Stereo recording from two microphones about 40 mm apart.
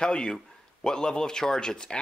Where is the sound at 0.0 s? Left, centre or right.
Left.